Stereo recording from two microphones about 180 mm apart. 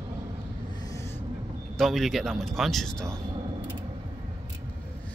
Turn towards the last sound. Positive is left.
turn(degrees=5)  # may be behind; listen again after turning